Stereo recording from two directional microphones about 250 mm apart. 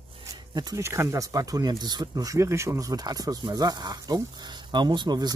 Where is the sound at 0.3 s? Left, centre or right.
Centre.